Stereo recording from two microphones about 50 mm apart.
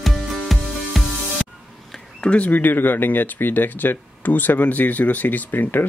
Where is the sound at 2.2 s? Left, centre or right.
Left.